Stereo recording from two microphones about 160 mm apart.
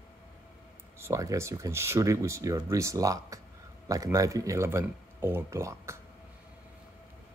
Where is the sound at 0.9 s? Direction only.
20° right (ahead or behind).